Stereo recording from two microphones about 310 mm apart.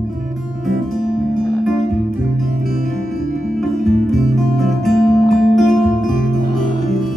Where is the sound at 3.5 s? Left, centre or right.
Centre.